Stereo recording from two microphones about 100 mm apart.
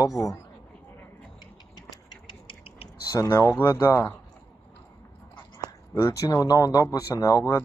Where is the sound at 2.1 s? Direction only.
55° left (ahead or behind).